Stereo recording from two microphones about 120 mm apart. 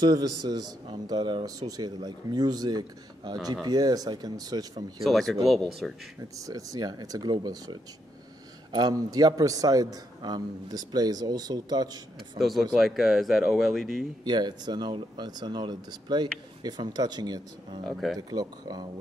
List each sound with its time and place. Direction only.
0.0 s a man's voice: 30° right (ahead or behind)
5.0 s speech: centre (ahead or behind)
6.3 s a man's voice: 30° right (ahead or behind)
8.7 s a man's voice: 35° right (ahead or behind)
12.4 s speech: centre (ahead or behind)
14.2 s a man's voice: 35° right (ahead or behind)
17.8 s speech: centre (ahead or behind)
18.3 s a man's voice: 35° right (ahead or behind)